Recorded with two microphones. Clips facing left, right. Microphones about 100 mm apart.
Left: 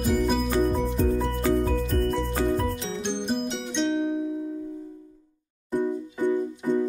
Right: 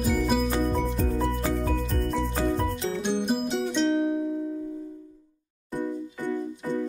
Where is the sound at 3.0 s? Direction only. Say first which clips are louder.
Right 1 dB; 5° right (ahead or behind).